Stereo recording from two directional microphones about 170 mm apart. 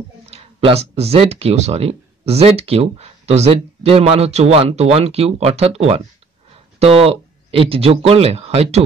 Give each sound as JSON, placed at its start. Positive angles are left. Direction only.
{"t": 0.3, "sound": "speech", "side_deg": -35}